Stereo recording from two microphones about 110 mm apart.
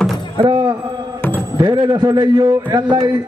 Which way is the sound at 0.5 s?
45° right (ahead or behind).